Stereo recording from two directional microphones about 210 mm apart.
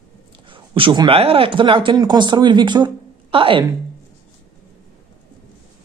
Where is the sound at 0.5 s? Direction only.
25° right (ahead or behind).